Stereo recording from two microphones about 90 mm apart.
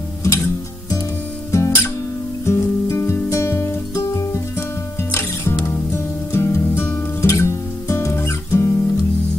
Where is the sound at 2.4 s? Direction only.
30° left (ahead or behind).